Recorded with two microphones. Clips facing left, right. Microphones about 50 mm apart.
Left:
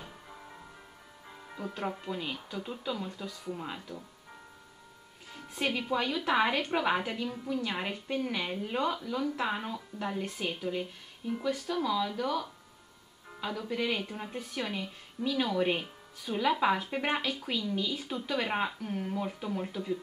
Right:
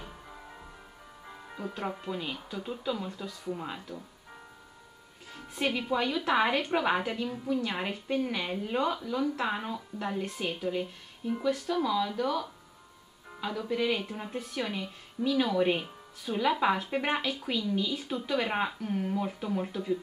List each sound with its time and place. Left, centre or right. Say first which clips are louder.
0.0 s music: right 2 dB; centre
1.3 s speech: right 1 dB; centre
5.3 s speech: right 1 dB; centre